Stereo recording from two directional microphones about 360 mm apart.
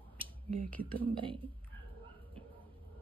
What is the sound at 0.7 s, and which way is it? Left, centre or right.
Speech, centre.